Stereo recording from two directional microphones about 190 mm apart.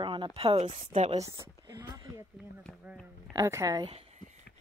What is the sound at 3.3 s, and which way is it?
Speech, 15° right (ahead or behind).